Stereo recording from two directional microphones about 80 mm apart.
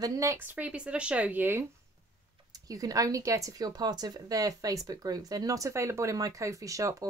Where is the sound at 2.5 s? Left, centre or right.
Right.